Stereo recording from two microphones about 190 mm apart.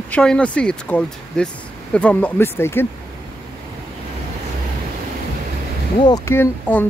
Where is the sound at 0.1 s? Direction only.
5° left (ahead or behind).